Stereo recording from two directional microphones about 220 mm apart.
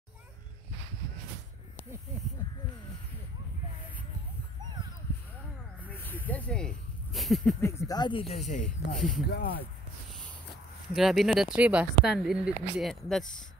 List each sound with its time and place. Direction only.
5.9 s snake: 10° left (ahead or behind)
7.6 s speech: 15° left (ahead or behind); by 8.6 s 35° left (ahead or behind)
8.9 s speech: centre (ahead or behind)
9.3 s speech: 45° left (ahead or behind)
11.0 s speech: centre (ahead or behind)